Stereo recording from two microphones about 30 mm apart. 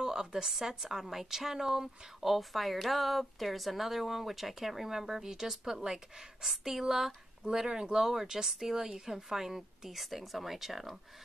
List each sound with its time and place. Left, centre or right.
0.0 s speech: centre
2.2 s speech: centre
6.4 s speech: centre
7.5 s speech: right; by 11.0 s centre